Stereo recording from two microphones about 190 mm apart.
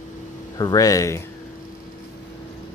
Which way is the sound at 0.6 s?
20° left (ahead or behind).